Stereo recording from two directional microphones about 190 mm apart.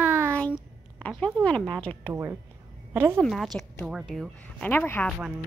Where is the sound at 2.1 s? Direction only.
15° right (ahead or behind).